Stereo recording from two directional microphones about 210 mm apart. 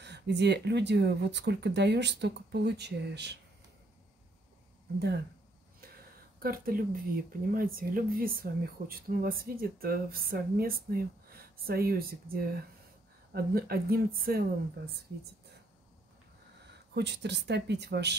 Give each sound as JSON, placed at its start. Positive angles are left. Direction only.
{"t": 0.0, "sound": "speech", "side_deg": -55}
{"t": 6.4, "sound": "speech", "side_deg": -45}
{"t": 16.9, "sound": "speech", "side_deg": -55}